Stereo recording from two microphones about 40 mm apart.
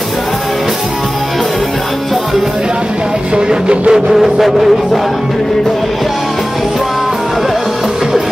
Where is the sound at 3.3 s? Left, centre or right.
Right.